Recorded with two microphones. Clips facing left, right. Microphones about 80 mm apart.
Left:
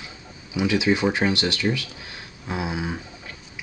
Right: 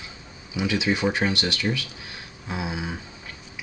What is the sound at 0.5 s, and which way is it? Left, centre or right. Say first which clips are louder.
Speech: left 3 dB; centre.